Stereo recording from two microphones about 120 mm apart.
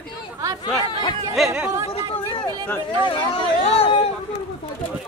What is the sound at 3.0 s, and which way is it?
Speech, 45° left (ahead or behind).